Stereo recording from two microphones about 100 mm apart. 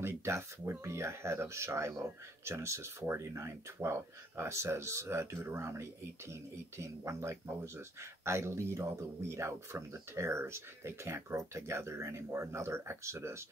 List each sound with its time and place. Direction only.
0.0 s speech: 30° right (ahead or behind)